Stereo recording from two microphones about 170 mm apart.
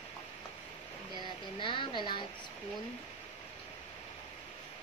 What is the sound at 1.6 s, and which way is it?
Speech, 30° left (ahead or behind).